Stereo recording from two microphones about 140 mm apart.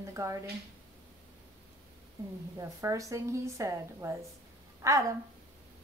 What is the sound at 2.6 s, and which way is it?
Speech, 20° right (ahead or behind).